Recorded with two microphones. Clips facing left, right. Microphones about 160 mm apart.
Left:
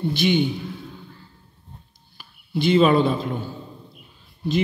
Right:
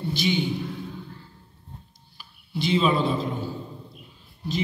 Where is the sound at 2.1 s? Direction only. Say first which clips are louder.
Left 5 dB; 55° left (ahead or behind).